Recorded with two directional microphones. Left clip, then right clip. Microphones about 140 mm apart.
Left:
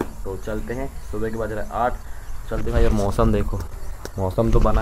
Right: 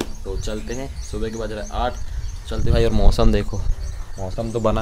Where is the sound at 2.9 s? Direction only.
15° right (ahead or behind).